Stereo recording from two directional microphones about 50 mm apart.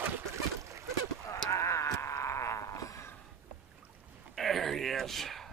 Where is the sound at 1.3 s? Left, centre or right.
Left.